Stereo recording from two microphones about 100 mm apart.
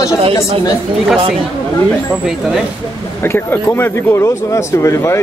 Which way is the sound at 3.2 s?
20° left (ahead or behind).